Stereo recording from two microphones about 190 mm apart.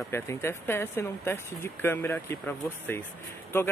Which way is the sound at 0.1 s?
15° left (ahead or behind).